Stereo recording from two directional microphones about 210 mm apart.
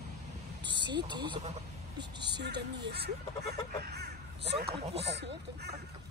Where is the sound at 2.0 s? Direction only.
55° right (ahead or behind).